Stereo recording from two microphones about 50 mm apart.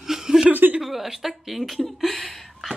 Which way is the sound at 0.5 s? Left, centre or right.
Right.